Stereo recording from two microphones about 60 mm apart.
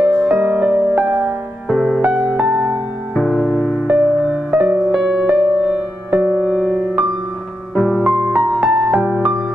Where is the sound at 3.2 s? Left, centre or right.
Centre.